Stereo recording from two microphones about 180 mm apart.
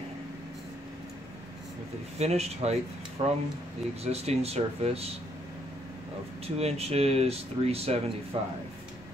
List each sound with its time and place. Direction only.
2.1 s speech: 35° right (ahead or behind)
6.4 s speech: 35° right (ahead or behind)